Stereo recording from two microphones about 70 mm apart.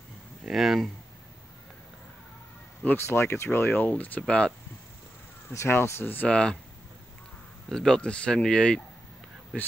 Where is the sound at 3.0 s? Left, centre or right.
Left; by 4.5 s centre.